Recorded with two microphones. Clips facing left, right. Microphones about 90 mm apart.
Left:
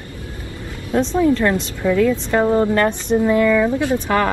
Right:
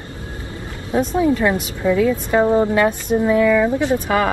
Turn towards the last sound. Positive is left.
turn(degrees=-15)  # may be behind; listen again after turning